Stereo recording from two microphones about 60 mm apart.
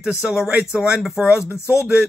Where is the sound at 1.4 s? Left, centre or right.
Left.